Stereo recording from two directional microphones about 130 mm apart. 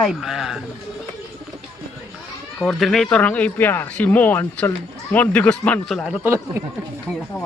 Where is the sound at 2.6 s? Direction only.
5° left (ahead or behind).